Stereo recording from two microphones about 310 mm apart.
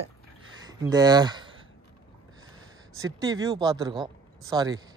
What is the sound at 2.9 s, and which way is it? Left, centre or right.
Speech, centre.